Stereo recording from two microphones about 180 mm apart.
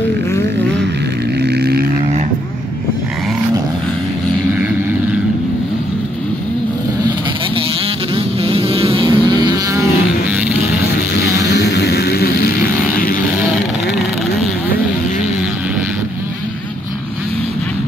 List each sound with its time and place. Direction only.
1.4 s vehicle: 65° right (ahead or behind)
8.1 s vehicle: 30° right (ahead or behind)
11.4 s vehicle: 70° left (ahead or behind)